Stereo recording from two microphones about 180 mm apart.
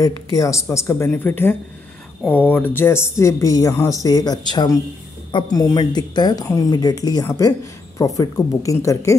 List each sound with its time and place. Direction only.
0.0 s speech: 20° left (ahead or behind)